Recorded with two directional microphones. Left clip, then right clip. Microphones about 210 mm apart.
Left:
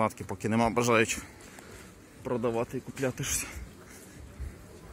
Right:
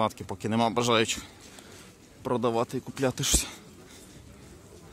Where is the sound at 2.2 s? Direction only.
30° right (ahead or behind).